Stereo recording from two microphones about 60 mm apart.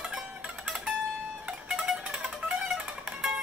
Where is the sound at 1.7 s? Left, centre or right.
Centre.